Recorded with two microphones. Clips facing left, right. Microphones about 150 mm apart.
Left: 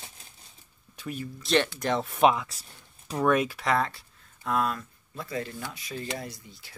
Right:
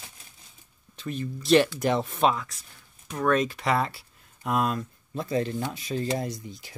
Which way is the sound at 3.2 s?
10° left (ahead or behind).